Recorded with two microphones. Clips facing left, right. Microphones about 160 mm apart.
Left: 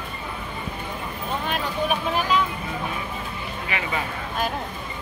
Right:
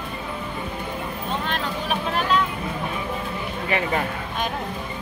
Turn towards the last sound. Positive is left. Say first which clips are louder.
# right 5 dB
turn(degrees=-40)  # may be behind; listen again after turning